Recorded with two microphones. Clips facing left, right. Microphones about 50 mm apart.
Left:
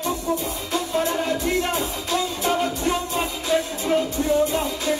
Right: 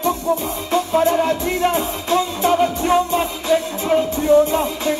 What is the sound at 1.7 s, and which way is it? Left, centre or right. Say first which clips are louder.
Music: right 6 dB; right.